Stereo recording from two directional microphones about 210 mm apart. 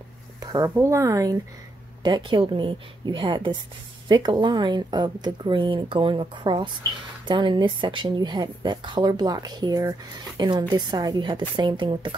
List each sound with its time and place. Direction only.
0.4 s speech: 15° right (ahead or behind)